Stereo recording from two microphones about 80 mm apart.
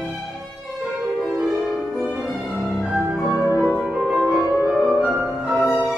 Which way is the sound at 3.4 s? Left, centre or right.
Right.